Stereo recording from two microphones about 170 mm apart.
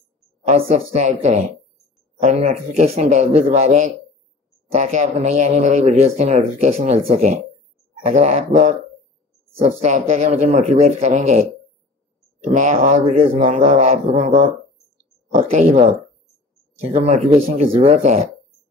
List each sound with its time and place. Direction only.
0.5 s speech: 40° right (ahead or behind)
12.4 s speech: 45° right (ahead or behind)
16.9 s speech: 40° right (ahead or behind)